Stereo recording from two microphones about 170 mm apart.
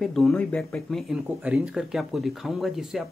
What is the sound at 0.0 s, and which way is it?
Speech, centre (ahead or behind).